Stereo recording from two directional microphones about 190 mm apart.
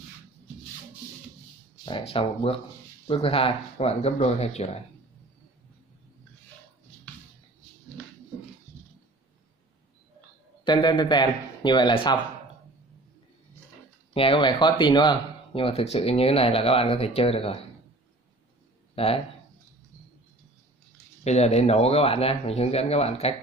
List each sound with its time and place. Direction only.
1.9 s speech: 25° left (ahead or behind)
10.6 s speech: 25° left (ahead or behind)
14.1 s speech: 25° left (ahead or behind)
18.9 s speech: 30° left (ahead or behind)
21.2 s speech: 35° left (ahead or behind)